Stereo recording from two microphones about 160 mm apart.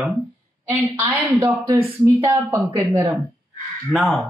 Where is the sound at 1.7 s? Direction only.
35° right (ahead or behind).